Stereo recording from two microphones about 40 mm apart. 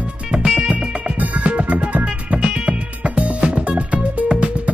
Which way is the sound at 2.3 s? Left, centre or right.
Right.